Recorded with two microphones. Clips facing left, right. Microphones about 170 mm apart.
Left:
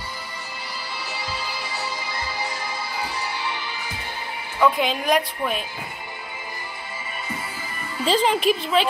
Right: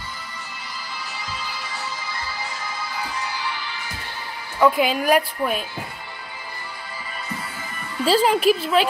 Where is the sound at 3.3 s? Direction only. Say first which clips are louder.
Even; 25° left (ahead or behind).